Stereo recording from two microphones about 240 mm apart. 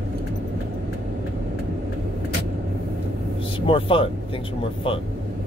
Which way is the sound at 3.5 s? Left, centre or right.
Left.